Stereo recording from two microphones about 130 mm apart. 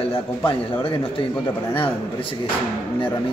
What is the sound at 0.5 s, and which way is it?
Speech, 40° left (ahead or behind).